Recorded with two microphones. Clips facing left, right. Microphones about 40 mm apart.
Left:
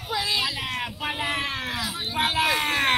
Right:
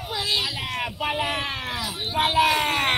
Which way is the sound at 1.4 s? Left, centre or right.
Right.